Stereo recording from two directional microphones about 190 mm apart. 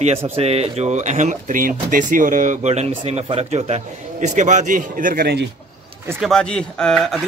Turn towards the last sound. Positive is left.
turn(degrees=0)  # may be behind; listen again after turning